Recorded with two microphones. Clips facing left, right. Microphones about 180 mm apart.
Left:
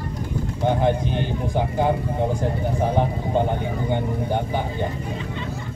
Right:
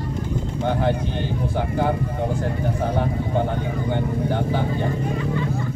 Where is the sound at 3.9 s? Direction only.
15° left (ahead or behind).